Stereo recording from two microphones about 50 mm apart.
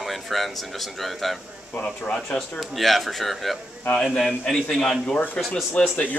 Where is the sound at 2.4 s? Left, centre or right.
Centre.